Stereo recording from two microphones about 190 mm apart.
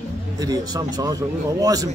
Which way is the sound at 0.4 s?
20° right (ahead or behind).